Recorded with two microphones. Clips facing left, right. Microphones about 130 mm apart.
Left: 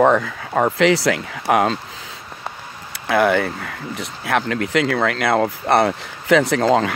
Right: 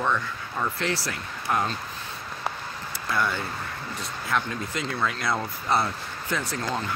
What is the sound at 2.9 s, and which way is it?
Speech, 80° left.